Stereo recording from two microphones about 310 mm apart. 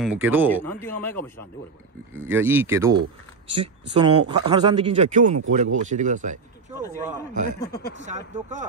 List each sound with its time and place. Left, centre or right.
0.0 s speech: centre
0.5 s speech: centre
2.1 s a man's voice: centre; by 8.6 s right